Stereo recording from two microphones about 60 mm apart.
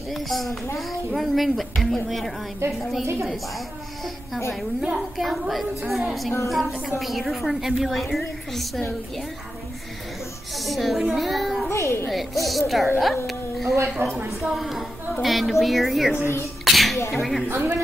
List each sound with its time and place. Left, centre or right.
0.1 s a woman's voice: centre
2.6 s a woman's voice: right
3.3 s a woman's voice: centre
10.5 s a child's voice: centre
11.7 s a child's voice: left
12.1 s a woman's voice: centre
13.0 s a sound: centre
14.0 s a woman's voice: right
14.4 s a woman's voice: centre
16.6 s a sound: centre
17.1 s a woman's voice: centre
17.5 s a woman's voice: right